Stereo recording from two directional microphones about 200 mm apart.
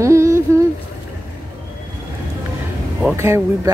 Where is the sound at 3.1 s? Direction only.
15° right (ahead or behind).